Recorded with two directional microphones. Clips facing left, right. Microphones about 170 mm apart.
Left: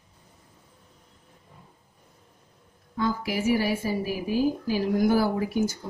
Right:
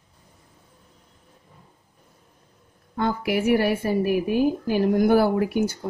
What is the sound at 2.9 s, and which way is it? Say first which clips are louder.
A woman's voice: right 3 dB; 60° right (ahead or behind).